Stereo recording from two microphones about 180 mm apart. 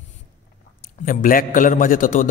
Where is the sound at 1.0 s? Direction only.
50° left (ahead or behind).